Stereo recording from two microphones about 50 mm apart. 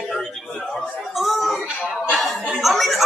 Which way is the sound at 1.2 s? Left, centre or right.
Centre.